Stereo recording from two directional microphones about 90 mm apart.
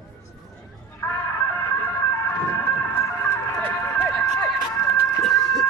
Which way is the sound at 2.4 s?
30° left (ahead or behind).